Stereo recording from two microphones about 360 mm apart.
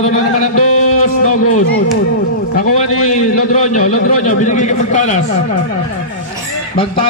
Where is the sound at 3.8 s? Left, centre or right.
Left.